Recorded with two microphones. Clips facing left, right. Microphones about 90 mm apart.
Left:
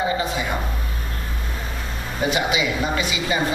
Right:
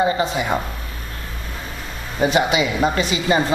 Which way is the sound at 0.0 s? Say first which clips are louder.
Right 4 dB; 25° right (ahead or behind).